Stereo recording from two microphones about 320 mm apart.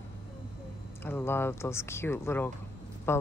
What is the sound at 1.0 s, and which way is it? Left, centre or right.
Speech, centre.